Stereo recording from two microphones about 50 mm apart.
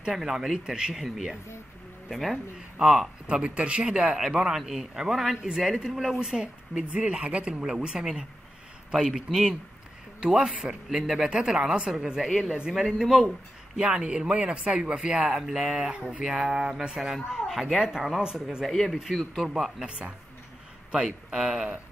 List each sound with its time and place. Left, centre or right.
0.1 s speech: centre
1.0 s speech: centre
2.8 s speech: centre
12.8 s speech: centre
13.7 s speech: centre
15.9 s speech: right
16.3 s speech: centre
19.5 s speech: centre
21.3 s speech: centre